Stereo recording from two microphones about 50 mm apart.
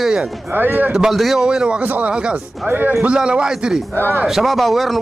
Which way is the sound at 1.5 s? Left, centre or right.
Centre.